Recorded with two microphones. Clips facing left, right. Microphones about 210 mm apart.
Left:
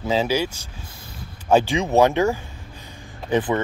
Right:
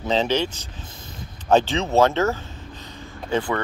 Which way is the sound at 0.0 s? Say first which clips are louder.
Even; 10° left (ahead or behind).